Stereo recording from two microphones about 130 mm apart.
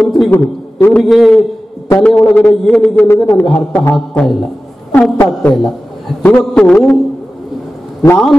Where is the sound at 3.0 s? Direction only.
20° left (ahead or behind).